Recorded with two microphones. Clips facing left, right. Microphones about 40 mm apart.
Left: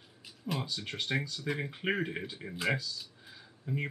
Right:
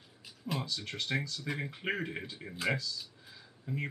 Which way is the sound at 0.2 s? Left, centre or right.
Centre.